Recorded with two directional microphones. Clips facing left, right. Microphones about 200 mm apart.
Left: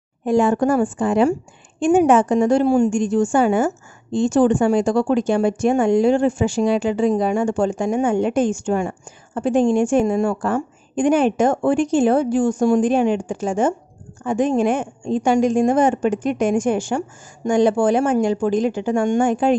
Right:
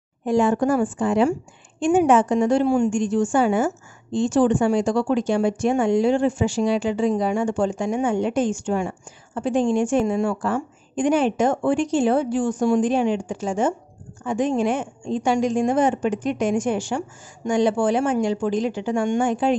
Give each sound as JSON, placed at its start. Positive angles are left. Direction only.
{"t": 0.2, "sound": "a woman's voice", "side_deg": 50}